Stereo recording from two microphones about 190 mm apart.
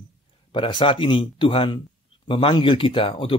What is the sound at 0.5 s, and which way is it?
A man's voice, 25° left (ahead or behind).